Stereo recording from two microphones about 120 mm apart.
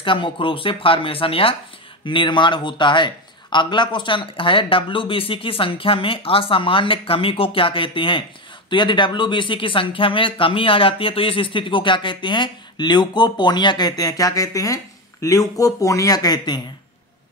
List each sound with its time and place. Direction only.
0.0 s speech: 45° left (ahead or behind)